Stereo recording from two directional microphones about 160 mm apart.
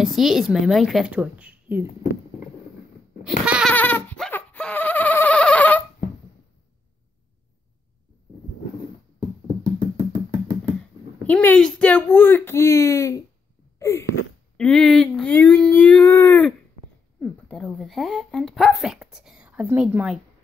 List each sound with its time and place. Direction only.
0.0 s speech: centre (ahead or behind)
3.3 s goat: 5° right (ahead or behind)
3.7 s a sound: 10° left (ahead or behind)
9.6 s music: 30° right (ahead or behind)
11.2 s speech: 5° left (ahead or behind)
13.7 s a sound: 15° left (ahead or behind)
14.6 s speech: 5° left (ahead or behind)
17.2 s speech: 5° left (ahead or behind)